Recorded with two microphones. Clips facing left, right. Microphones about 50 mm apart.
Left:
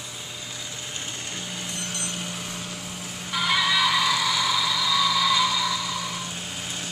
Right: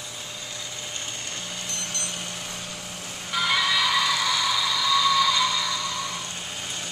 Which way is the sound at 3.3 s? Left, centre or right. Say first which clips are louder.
Left 1 dB; centre.